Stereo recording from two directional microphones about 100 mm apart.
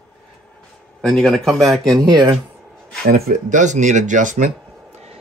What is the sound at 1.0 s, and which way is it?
Speech, 5° left (ahead or behind).